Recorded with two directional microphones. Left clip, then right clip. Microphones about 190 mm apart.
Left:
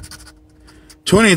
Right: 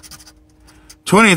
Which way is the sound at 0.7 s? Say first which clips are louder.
Even; centre (ahead or behind).